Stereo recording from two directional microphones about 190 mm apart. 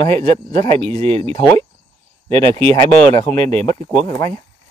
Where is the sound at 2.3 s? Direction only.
25° right (ahead or behind).